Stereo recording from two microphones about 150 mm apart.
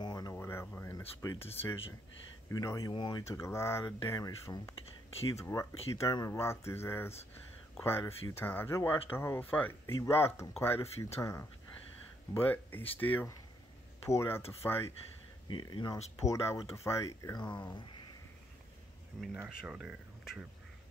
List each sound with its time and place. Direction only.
0.0 s a sound: 25° left (ahead or behind)
2.5 s speech: 25° left (ahead or behind)
3.3 s speech: 20° left (ahead or behind)
15.4 s speech: 30° left (ahead or behind)
19.1 s speech: 5° right (ahead or behind)